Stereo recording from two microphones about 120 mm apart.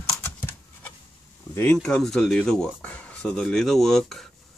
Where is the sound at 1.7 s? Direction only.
5° left (ahead or behind).